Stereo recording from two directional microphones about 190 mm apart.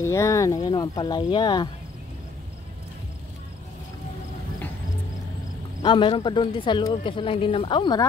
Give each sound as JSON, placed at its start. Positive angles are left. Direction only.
{"t": 0.0, "sound": "speech", "side_deg": 15}
{"t": 5.8, "sound": "speech", "side_deg": 25}